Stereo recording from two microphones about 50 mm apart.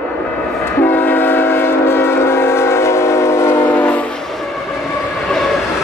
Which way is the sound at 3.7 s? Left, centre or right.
Left.